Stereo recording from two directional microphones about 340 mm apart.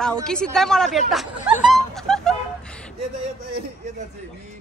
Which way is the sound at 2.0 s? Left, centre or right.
Centre.